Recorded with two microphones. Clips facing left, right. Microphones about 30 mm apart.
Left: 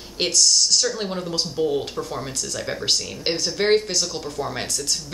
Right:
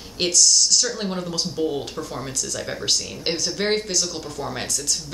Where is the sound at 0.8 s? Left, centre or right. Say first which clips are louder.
Left 1 dB; centre.